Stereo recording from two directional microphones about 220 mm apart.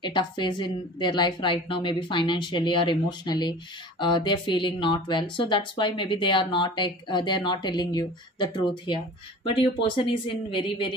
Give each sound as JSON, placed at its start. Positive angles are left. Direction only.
{"t": 0.0, "sound": "speech", "side_deg": 20}